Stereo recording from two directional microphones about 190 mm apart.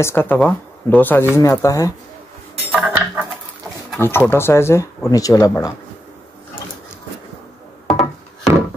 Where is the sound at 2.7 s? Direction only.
10° right (ahead or behind).